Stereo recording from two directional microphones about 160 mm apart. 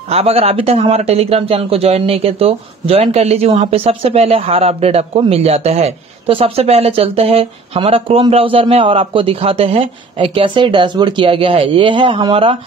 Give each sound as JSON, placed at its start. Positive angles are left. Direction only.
{"t": 0.1, "sound": "speech", "side_deg": -40}